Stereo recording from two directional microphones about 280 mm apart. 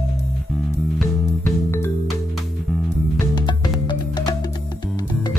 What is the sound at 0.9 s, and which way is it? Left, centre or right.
Music, centre.